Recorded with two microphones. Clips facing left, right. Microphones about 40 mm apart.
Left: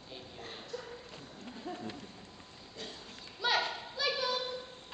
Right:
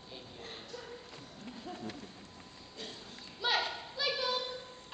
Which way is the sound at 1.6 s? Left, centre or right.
Centre.